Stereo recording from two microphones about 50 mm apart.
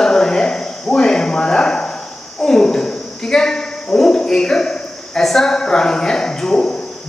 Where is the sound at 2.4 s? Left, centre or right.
Centre.